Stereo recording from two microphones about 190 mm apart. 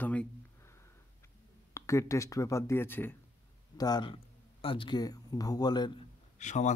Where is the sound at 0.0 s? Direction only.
10° left (ahead or behind).